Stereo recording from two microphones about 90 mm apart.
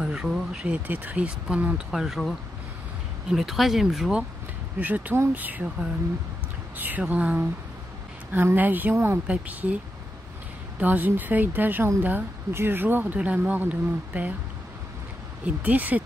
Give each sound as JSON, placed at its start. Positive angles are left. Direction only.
{"t": 0.0, "sound": "speech", "side_deg": -5}
{"t": 0.8, "sound": "speech", "side_deg": -20}
{"t": 1.9, "sound": "speech", "side_deg": 0}
{"t": 4.7, "sound": "speech", "side_deg": -20}
{"t": 10.8, "sound": "speech", "side_deg": -20}
{"t": 15.4, "sound": "speech", "side_deg": -20}